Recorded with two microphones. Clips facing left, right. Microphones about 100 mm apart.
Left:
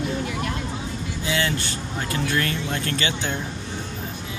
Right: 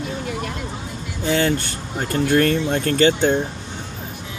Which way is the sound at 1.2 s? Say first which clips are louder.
Right 6 dB; 50° right (ahead or behind).